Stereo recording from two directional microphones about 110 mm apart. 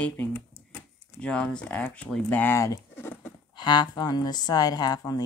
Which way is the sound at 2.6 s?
25° left (ahead or behind).